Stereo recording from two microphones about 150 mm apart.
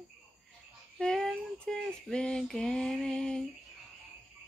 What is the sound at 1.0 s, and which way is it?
Female singing, 5° left (ahead or behind).